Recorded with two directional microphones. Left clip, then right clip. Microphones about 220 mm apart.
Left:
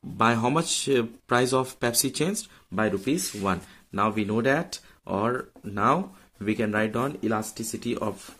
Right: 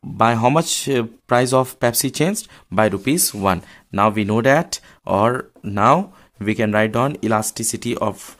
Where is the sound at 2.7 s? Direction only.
45° right (ahead or behind).